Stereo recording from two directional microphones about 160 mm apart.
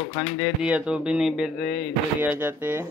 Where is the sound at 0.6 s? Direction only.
5° right (ahead or behind).